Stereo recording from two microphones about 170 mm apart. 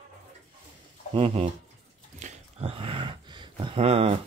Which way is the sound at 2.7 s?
30° right (ahead or behind).